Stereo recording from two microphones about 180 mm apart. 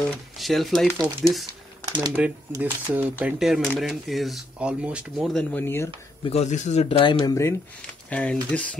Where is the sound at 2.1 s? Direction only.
10° right (ahead or behind); by 5.9 s 10° left (ahead or behind).